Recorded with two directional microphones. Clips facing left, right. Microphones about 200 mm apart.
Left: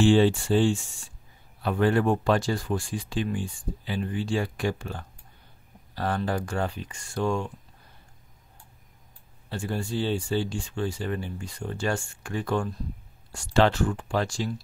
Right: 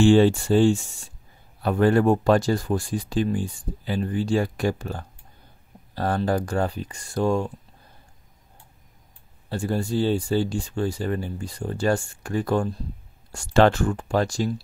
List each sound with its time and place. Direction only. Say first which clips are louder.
0.0 s speech: right 4 dB; 45° right (ahead or behind)
9.5 s speech: right 5 dB; 40° right (ahead or behind)